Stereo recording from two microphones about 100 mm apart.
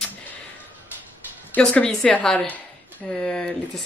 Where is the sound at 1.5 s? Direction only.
10° left (ahead or behind).